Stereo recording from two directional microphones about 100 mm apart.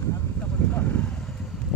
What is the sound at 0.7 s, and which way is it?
Vehicle, 15° left (ahead or behind).